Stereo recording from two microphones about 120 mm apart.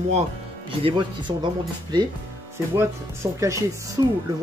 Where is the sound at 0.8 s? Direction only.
40° right (ahead or behind).